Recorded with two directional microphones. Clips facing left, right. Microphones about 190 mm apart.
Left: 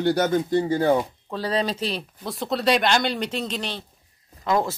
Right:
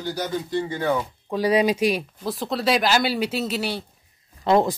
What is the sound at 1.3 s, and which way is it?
Speech, 10° right (ahead or behind).